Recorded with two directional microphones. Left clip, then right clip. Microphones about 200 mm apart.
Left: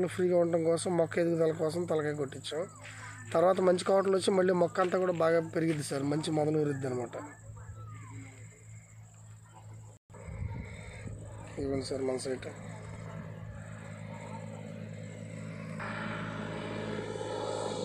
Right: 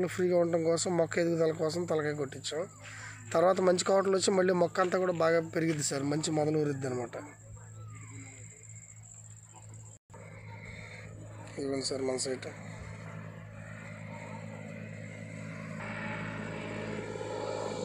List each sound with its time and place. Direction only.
0.0 s speech: 5° right (ahead or behind)
10.6 s neigh: 5° right (ahead or behind)
11.5 s speech: 5° right (ahead or behind)
15.8 s music: 10° right (ahead or behind)
16.7 s vehicle: 10° right (ahead or behind)